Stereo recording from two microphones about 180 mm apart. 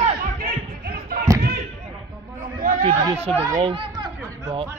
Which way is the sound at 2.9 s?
20° right (ahead or behind).